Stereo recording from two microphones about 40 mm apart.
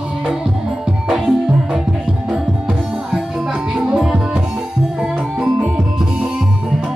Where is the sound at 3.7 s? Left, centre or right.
Right.